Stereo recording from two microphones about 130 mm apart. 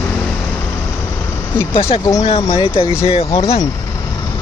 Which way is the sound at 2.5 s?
45° left (ahead or behind).